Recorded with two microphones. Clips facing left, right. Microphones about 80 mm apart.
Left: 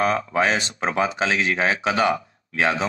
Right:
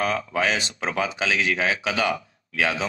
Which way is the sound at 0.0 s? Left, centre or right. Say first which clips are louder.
Left 3 dB; left.